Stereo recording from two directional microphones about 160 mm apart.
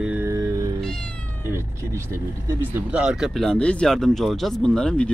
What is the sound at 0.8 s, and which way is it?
Speech, 5° left (ahead or behind).